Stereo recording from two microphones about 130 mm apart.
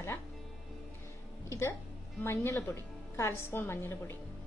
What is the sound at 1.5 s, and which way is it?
A woman's voice, 20° left (ahead or behind).